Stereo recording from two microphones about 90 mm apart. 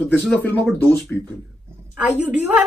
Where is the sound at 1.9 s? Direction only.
15° right (ahead or behind).